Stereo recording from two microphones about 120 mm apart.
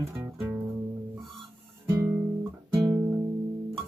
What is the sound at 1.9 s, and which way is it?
Music, 20° right (ahead or behind).